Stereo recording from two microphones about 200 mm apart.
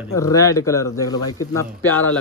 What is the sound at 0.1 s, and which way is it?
Speech, 15° left (ahead or behind).